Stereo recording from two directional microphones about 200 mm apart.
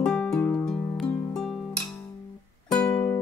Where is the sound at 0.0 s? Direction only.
5° left (ahead or behind).